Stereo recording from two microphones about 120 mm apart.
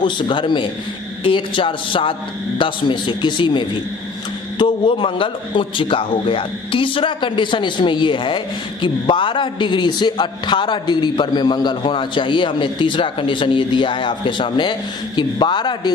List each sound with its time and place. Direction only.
0.0 s a man's voice: 40° left (ahead or behind)